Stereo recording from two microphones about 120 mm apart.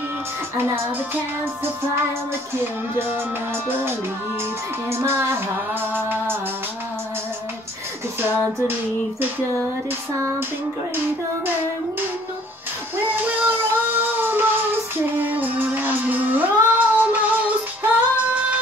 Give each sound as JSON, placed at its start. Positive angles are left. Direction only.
{"t": 1.4, "sound": "music", "side_deg": -20}
{"t": 8.2, "sound": "music", "side_deg": -20}
{"t": 12.9, "sound": "child singing", "side_deg": -15}